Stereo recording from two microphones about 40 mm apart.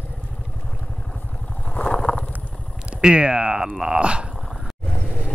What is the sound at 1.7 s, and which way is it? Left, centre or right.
Vehicle, left.